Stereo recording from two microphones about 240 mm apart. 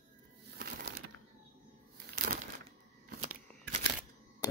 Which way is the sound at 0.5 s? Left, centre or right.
Right.